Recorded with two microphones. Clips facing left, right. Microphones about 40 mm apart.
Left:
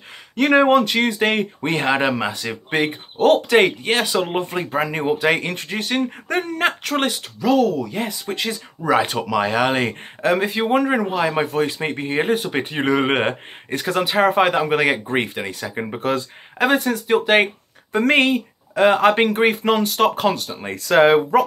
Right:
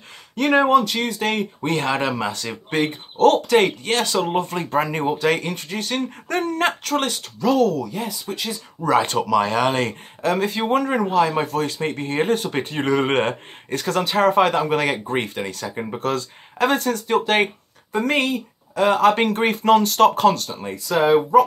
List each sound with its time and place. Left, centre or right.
0.6 s speech: left
4.6 s speech: centre
7.9 s speech: left
8.8 s speech: centre
17.9 s speech: left; by 20.6 s centre
20.9 s speech: left